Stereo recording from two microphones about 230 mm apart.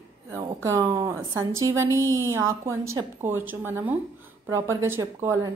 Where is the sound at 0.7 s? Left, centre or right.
Centre.